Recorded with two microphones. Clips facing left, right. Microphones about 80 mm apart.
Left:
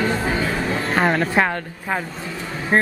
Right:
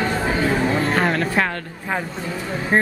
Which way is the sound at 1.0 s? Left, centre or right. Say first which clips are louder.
Left 1 dB; centre.